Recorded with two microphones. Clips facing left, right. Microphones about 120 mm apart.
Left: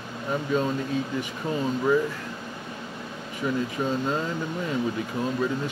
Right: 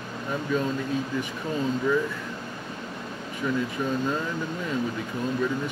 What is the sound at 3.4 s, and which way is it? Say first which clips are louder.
Speech: even; 15° left (ahead or behind).